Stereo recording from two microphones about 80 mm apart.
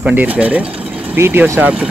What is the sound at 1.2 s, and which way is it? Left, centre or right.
Speech, right.